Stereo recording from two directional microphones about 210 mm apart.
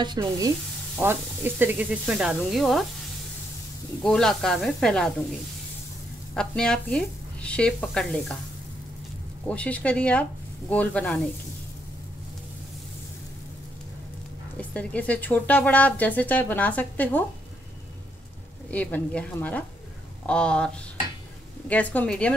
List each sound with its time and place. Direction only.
0.0 s stir: 20° right (ahead or behind)
0.9 s speech: 10° right (ahead or behind)
4.0 s speech: 5° left (ahead or behind)
6.3 s speech: 5° left (ahead or behind)
9.5 s speech: 5° left (ahead or behind)
14.6 s speech: 5° left (ahead or behind)
18.7 s speech: 10° left (ahead or behind)